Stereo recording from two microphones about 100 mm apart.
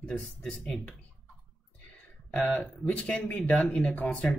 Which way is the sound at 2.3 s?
10° left (ahead or behind).